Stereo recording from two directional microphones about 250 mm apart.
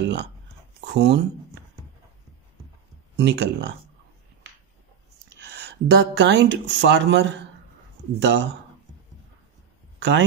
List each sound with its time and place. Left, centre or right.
0.8 s speech: right
3.2 s speech: right
5.4 s speech: right
9.9 s a sound: right